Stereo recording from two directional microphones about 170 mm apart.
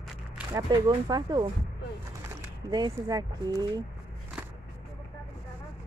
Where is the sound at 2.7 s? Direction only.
25° right (ahead or behind).